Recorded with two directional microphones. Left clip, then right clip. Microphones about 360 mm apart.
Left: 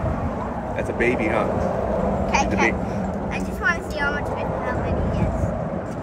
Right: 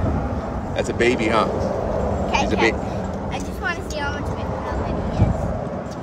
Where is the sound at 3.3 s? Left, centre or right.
Centre.